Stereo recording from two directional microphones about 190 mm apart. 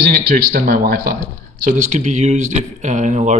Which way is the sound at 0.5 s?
50° right (ahead or behind).